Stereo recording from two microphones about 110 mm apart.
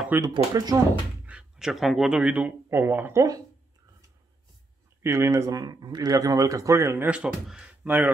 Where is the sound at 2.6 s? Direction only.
20° right (ahead or behind).